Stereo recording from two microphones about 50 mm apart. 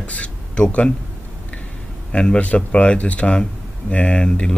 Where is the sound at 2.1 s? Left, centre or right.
Left.